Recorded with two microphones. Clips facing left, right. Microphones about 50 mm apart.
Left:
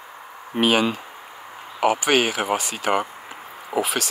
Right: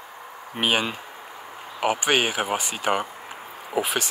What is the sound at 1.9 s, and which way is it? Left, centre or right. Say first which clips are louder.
Speech: left 2 dB; centre.